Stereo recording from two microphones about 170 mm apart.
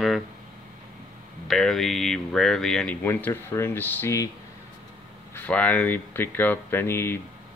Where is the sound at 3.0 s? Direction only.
15° left (ahead or behind).